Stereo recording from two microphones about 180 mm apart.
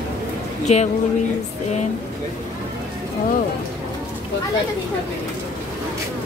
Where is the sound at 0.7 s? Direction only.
35° left (ahead or behind).